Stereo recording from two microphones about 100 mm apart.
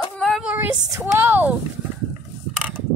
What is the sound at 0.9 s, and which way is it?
Speech, 20° right (ahead or behind).